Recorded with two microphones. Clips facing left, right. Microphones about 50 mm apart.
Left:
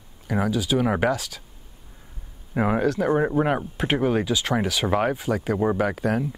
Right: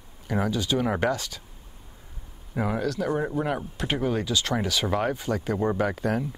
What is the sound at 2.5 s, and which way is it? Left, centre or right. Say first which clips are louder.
Speech: left 5 dB; left.